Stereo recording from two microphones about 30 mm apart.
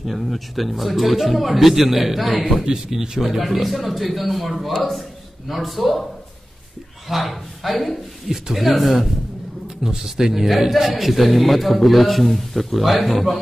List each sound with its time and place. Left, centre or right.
0.0 s speech: centre
2.6 s speech: centre
3.2 s speech: centre
7.1 s speech: centre
9.8 s speech: centre